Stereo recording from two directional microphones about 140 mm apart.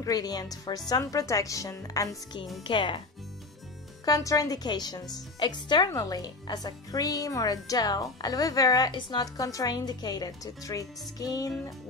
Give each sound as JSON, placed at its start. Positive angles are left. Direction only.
{"t": 0.0, "sound": "a woman's voice", "side_deg": 25}
{"t": 2.6, "sound": "speech", "side_deg": 35}
{"t": 4.0, "sound": "a woman's voice", "side_deg": 25}